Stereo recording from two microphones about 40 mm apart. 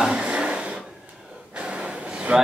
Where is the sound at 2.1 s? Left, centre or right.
Right.